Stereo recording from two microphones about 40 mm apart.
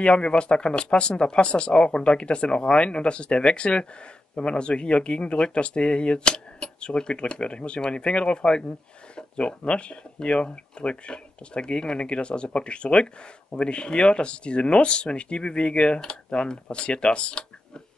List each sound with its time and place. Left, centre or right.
0.0 s speech: left